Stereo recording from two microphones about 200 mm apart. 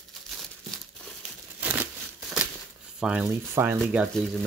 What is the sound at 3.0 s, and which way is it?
Speech, 5° right (ahead or behind).